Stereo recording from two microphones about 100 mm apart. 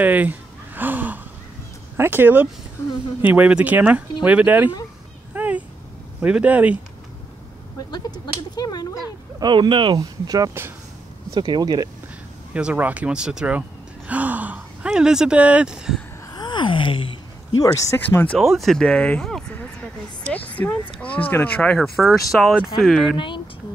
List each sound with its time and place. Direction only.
0.0 s a sound: 15° right (ahead or behind)
2.0 s speech: 20° right (ahead or behind)
5.3 s cat: 15° right (ahead or behind)
6.2 s speech: 10° right (ahead or behind)
7.9 s a sound: 40° left (ahead or behind)
9.4 s speech: 50° right (ahead or behind)
9.9 s speech: 40° right (ahead or behind)
11.3 s speech: 50° right (ahead or behind)
12.5 s speech: 15° right (ahead or behind)
16.3 s gasp: 50° left (ahead or behind)
17.6 s speech: 35° left (ahead or behind)
17.9 s speech: 20° left (ahead or behind)
18.4 s speech: centre (ahead or behind)
23.1 s speech: 55° left (ahead or behind)